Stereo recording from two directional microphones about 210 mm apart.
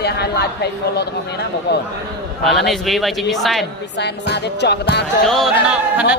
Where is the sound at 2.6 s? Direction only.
Centre (ahead or behind).